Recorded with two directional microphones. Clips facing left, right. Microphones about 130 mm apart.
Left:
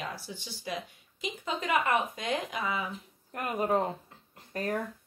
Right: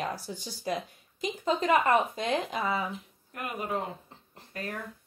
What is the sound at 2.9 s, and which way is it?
Speech, 40° left (ahead or behind).